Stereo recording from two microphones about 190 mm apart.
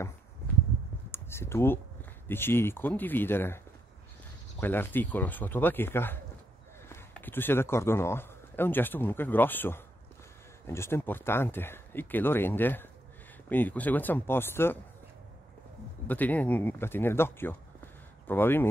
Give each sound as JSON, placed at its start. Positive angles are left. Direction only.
{"t": 1.1, "sound": "a sound", "side_deg": 15}
{"t": 2.2, "sound": "speech", "side_deg": 10}
{"t": 16.1, "sound": "speech", "side_deg": 10}